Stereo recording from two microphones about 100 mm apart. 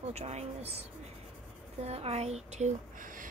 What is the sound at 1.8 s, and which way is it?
Speech, 90° right.